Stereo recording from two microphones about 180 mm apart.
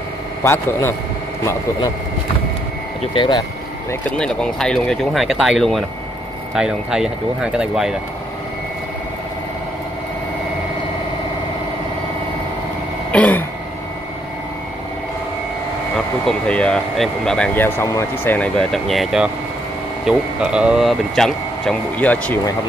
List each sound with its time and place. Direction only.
0.4 s a man's voice: 15° left (ahead or behind)
3.0 s speech: 25° left (ahead or behind)
4.2 s speech: 5° left (ahead or behind)
13.1 s throat clearing: 10° left (ahead or behind)
16.3 s speech: 5° left (ahead or behind)